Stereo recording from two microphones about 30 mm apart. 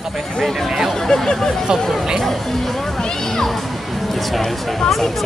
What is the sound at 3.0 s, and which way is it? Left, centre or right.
Speech, centre.